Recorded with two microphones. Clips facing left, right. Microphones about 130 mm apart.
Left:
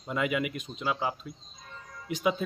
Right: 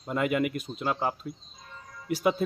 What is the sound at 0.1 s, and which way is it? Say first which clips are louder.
Speech: right 2 dB; 45° right (ahead or behind).